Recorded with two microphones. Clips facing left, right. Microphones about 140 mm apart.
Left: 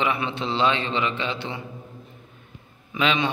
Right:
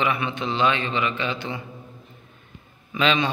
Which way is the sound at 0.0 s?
25° left (ahead or behind).